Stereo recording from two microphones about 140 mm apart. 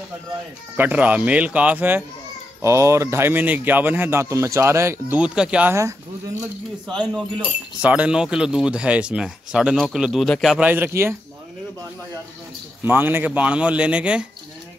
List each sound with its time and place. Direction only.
0.7 s speech: 10° right (ahead or behind)
5.2 s speech: 5° right (ahead or behind)
6.9 s speech: 5° left (ahead or behind)
7.4 s speech: 10° right (ahead or behind)
10.7 s speech: 15° right (ahead or behind)
12.8 s speech: 15° right (ahead or behind)